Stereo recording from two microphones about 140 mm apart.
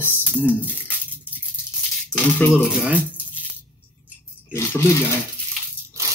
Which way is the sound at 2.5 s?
10° right (ahead or behind).